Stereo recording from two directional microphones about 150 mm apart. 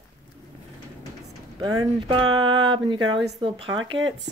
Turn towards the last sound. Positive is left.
turn(degrees=-30)  # may be behind; listen again after turning